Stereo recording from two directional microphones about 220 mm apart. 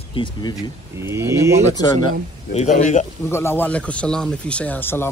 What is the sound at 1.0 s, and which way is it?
Speech, 10° right (ahead or behind).